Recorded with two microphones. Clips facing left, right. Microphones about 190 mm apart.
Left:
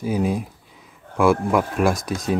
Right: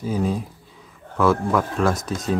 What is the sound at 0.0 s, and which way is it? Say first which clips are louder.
Speech: left 1 dB; 10° left (ahead or behind).